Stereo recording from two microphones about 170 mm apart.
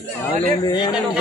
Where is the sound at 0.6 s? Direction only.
25° left (ahead or behind).